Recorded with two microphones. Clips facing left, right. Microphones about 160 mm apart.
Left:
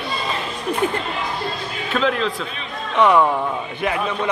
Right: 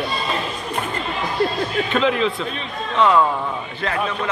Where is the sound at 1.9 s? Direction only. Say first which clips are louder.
Even; centre (ahead or behind).